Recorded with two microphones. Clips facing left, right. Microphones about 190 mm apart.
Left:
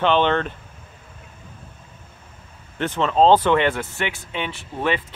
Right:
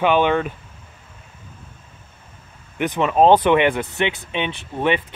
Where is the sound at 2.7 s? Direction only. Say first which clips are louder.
Right 1 dB; 15° right (ahead or behind).